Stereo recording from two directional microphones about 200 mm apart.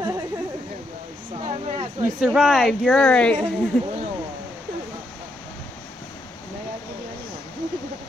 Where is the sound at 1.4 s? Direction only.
30° right (ahead or behind).